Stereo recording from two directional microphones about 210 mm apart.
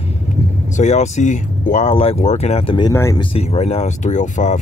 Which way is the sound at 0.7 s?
35° left (ahead or behind).